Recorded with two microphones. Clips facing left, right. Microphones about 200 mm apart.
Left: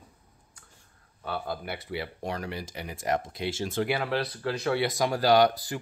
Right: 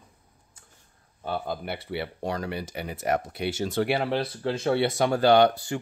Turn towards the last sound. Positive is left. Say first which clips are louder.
# right 2 dB
turn(degrees=-30)  # may be behind; listen again after turning